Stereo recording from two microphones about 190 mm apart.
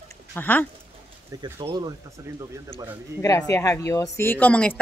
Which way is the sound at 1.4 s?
25° right (ahead or behind).